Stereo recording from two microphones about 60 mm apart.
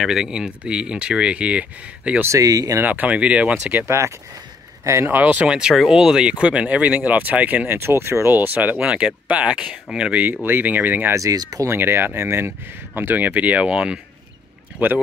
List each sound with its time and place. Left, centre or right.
0.0 s speech: centre
2.2 s speech: right
2.8 s speech: right
3.8 s speech: right
5.0 s speech: right
5.5 s speech: centre
7.6 s speech: right
8.7 s speech: centre
10.1 s speech: right
11.1 s speech: right
11.6 s speech: right; by 13.9 s centre